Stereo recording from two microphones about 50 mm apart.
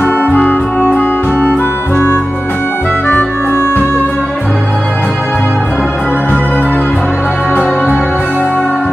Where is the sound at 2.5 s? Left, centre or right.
Left.